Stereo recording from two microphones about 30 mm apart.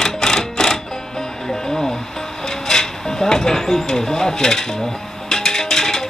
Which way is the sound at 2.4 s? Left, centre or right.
Centre.